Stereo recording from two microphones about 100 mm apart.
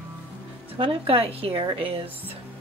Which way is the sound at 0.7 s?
60° right (ahead or behind).